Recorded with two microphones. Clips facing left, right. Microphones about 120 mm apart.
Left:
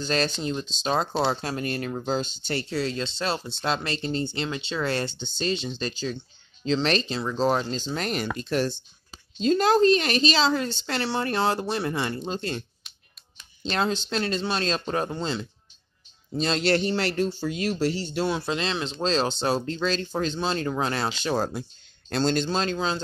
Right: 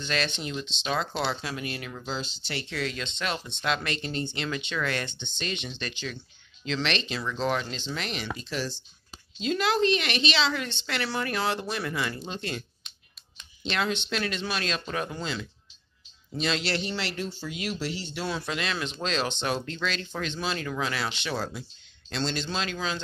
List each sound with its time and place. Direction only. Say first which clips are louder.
0.0 s speech: left 5 dB; 40° left (ahead or behind)
18.2 s speech: left 5 dB; 25° left (ahead or behind)